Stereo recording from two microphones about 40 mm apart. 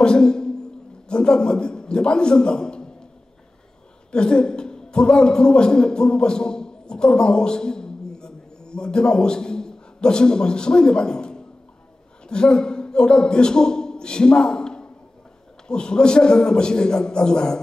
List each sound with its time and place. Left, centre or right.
0.0 s a man's voice: centre
4.1 s a man's voice: left